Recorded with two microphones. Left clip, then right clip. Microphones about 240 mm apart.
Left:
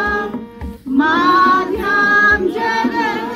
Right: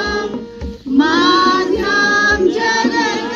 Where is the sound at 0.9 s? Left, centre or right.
Centre.